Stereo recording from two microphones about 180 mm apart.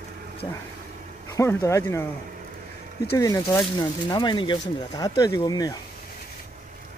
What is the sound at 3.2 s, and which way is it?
Speech, 15° left (ahead or behind).